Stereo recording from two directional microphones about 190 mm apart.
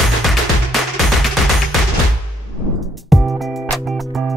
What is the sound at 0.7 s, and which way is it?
Music, centre (ahead or behind).